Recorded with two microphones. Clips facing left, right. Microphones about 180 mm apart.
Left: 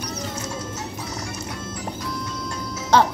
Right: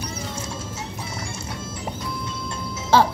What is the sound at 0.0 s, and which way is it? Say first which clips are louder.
Music: left 1 dB; 10° right (ahead or behind).